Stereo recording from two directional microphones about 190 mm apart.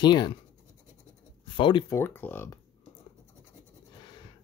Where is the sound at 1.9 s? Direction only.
10° left (ahead or behind).